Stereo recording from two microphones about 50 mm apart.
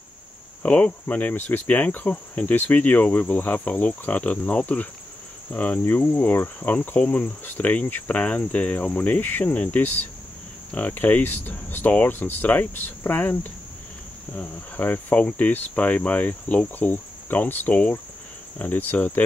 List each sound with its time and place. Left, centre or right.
0.6 s cricket: left
7.0 s speech: left
7.4 s cricket: left
10.9 s cricket: left